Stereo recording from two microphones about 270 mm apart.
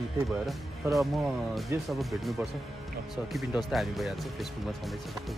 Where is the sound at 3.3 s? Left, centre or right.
Centre.